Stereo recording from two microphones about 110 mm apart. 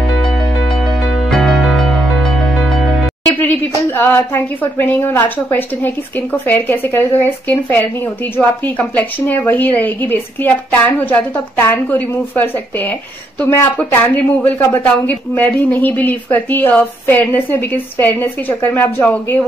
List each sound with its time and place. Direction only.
1.3 s music: centre (ahead or behind)
3.3 s speech: 15° left (ahead or behind)